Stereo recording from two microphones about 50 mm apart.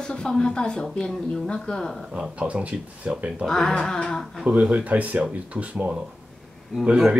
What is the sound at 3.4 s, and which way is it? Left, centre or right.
Speech, centre.